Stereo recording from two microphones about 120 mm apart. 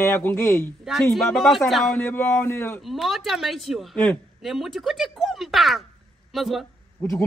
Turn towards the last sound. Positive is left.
turn(degrees=20)  # may be behind; listen again after turning